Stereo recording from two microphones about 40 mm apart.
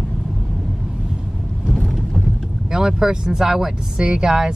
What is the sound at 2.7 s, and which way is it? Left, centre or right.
Speech, centre.